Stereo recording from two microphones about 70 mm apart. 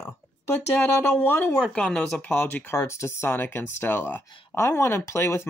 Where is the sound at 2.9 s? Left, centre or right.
Left.